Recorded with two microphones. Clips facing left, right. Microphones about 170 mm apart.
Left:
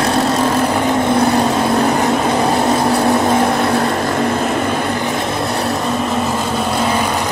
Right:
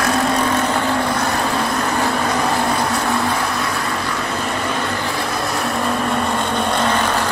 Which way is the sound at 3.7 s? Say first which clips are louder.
Left 7 dB; 40° left (ahead or behind).